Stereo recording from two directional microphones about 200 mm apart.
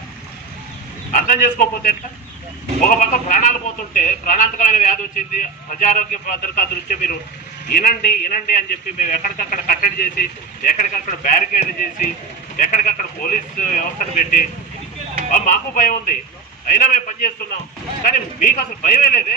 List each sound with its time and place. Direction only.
1.1 s a man's voice: 45° left (ahead or behind)